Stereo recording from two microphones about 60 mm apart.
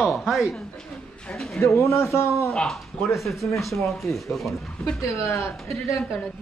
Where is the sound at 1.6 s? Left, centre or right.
Left.